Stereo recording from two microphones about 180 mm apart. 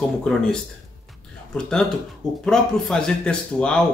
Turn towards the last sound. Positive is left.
turn(degrees=5)  # may be behind; listen again after turning